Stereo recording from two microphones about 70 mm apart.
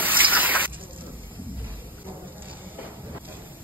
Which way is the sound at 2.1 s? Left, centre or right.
Right.